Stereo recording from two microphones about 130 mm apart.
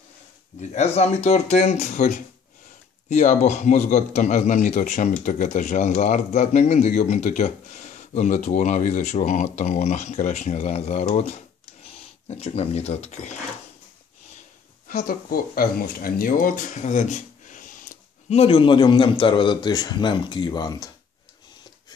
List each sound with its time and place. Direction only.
0.6 s a man's voice: 55° left (ahead or behind)
14.9 s speech: 90° left
16.3 s speech: 90° left
18.3 s a man's voice: 45° left (ahead or behind)